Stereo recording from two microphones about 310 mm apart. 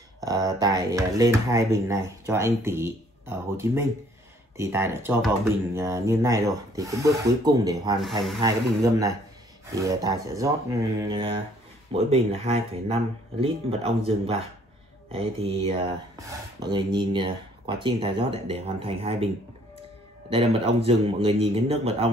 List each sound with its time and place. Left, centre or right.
0.2 s speech: centre
9.7 s speech: centre
20.2 s speech: centre